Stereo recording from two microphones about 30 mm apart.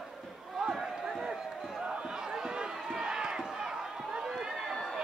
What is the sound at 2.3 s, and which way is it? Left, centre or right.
Run, right.